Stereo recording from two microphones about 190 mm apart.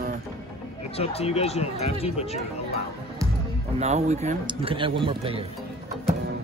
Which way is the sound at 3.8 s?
35° right (ahead or behind).